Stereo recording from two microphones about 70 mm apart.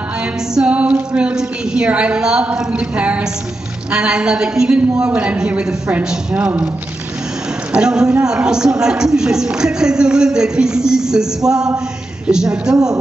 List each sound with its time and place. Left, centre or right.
0.2 s speech: centre
7.7 s speech: centre